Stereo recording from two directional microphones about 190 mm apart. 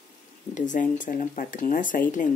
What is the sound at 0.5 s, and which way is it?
Speech, 40° left (ahead or behind).